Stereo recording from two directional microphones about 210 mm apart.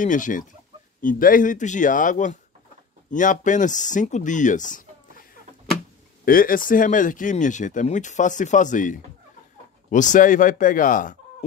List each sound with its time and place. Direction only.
0.0 s speech: 40° left (ahead or behind)
6.2 s speech: 40° left (ahead or behind)